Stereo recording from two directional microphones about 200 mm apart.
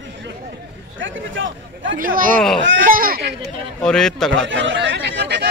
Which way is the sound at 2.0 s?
45° right (ahead or behind).